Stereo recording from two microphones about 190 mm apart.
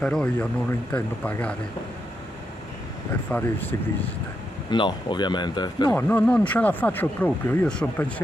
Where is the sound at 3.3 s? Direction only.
10° left (ahead or behind).